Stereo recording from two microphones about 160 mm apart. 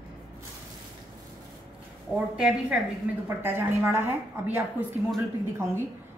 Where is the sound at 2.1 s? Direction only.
5° right (ahead or behind).